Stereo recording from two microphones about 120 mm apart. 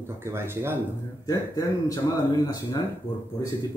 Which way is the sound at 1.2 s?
30° left (ahead or behind).